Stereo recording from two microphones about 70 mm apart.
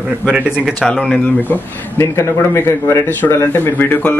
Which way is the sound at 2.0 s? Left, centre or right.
Left.